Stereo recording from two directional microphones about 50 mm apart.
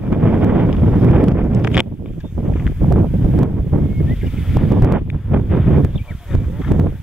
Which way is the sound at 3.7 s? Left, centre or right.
Right.